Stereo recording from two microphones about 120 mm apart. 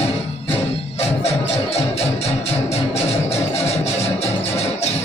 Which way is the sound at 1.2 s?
60° left (ahead or behind).